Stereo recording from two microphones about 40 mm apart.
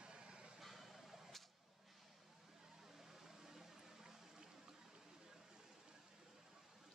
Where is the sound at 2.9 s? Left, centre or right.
Centre.